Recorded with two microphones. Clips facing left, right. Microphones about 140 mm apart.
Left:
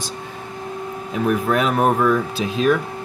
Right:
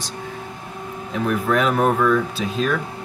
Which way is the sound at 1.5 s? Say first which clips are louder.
Right 2 dB; 5° left (ahead or behind).